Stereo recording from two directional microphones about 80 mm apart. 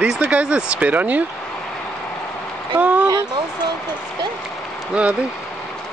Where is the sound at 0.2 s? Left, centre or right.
Centre.